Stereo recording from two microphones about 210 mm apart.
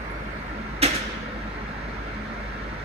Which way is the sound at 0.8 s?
30° right (ahead or behind).